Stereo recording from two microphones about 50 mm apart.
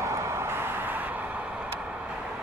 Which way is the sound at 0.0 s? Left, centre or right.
Right.